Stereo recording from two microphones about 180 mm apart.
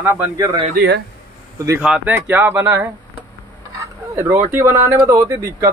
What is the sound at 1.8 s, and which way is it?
Speech, 5° right (ahead or behind).